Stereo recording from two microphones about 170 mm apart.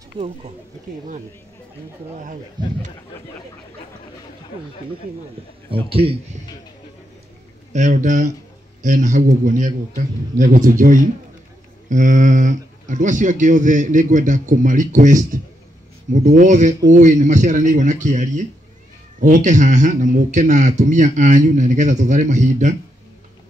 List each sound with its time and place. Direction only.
2.6 s speech: 25° right (ahead or behind)
5.7 s speech: 35° right (ahead or behind)
7.7 s speech: 45° right (ahead or behind)